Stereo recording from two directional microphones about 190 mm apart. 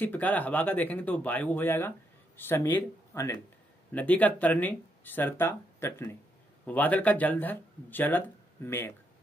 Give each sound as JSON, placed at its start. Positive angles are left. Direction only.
{"t": 0.0, "sound": "speech", "side_deg": 10}